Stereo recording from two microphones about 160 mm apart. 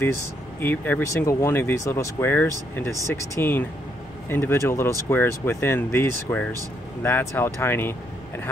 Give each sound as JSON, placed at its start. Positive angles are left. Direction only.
{"t": 0.6, "sound": "speech", "side_deg": 15}